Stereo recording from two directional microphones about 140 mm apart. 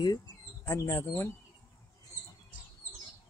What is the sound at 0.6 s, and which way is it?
Speech, 15° left (ahead or behind).